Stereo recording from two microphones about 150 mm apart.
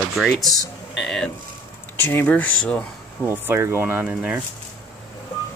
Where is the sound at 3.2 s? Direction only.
15° right (ahead or behind).